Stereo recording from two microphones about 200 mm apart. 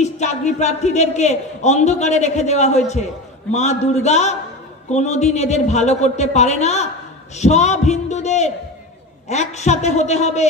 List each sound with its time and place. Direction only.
0.0 s a man's voice: 35° left (ahead or behind)